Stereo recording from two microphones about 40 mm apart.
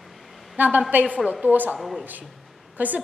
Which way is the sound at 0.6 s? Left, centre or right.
Right.